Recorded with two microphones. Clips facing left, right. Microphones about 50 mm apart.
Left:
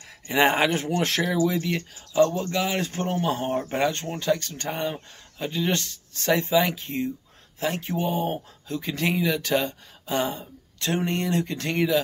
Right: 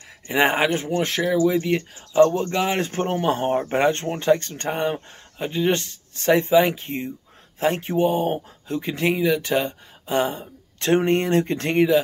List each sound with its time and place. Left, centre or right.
0.3 s speech: centre
0.7 s speech: centre
1.7 s speech: right
9.1 s speech: centre
10.8 s speech: right